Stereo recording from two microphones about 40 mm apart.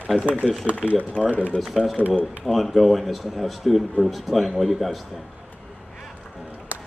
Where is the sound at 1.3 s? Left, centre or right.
Left.